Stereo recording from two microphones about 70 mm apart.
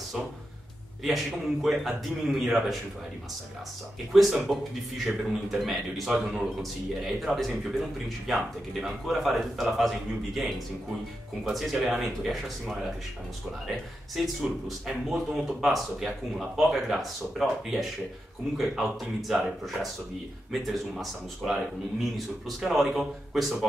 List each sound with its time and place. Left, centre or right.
1.0 s speech: centre
4.1 s speech: centre